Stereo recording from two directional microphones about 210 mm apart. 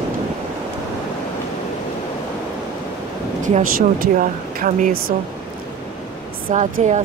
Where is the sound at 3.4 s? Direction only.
40° right (ahead or behind).